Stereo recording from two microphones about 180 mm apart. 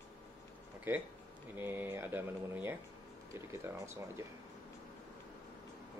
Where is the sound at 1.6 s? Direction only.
10° right (ahead or behind).